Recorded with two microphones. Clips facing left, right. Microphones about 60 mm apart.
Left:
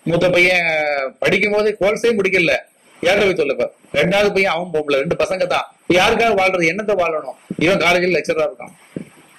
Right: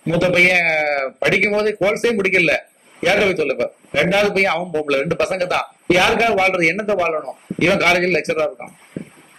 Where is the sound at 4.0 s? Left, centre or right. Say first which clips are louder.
Left 1 dB; centre.